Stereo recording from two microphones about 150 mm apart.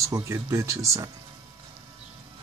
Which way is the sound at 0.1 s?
20° right (ahead or behind).